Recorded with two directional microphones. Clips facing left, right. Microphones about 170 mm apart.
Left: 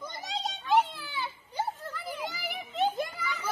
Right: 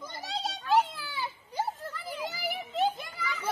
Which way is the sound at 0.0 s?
5° right (ahead or behind).